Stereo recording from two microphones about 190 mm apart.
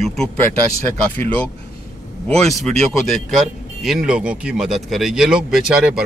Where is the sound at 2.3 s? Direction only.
Centre (ahead or behind).